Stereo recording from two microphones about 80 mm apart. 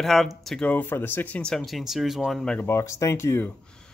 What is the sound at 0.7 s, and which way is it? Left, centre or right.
Speech, left.